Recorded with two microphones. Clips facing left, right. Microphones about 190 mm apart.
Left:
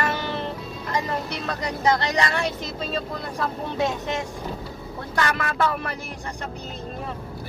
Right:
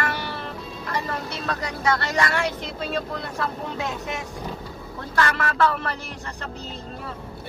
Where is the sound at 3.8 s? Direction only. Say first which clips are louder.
Left 7 dB; 20° left (ahead or behind).